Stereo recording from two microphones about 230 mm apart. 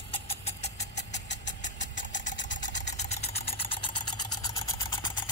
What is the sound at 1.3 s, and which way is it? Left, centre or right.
Vehicle, left.